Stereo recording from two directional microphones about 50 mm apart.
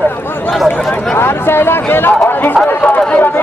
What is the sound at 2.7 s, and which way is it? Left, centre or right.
Run, left.